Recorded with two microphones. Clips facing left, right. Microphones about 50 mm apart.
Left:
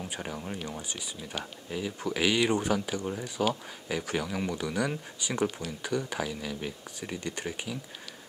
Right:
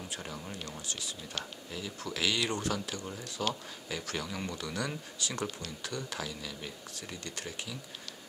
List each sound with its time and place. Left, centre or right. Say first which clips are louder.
0.0 s speech: left 5 dB; centre